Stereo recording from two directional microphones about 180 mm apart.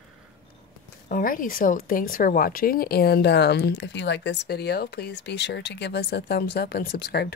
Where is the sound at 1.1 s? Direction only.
50° left (ahead or behind).